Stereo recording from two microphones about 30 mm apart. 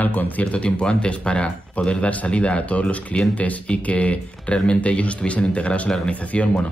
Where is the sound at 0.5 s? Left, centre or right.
Left.